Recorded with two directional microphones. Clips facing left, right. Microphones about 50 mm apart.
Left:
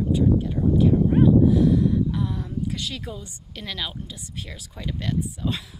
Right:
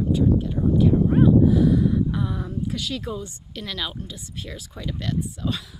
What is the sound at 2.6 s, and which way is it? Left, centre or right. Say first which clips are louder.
Speech: right 2 dB; centre.